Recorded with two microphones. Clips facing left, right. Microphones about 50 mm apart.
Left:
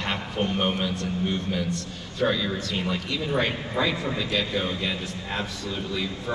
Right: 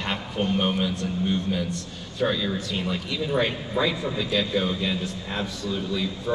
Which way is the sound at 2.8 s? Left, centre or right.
Centre.